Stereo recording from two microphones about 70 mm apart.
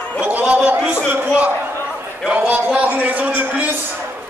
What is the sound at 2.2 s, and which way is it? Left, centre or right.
A man's voice, right.